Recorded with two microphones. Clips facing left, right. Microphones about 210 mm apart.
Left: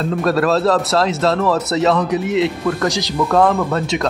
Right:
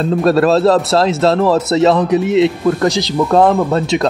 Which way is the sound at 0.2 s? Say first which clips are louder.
Right 5 dB; 30° right (ahead or behind).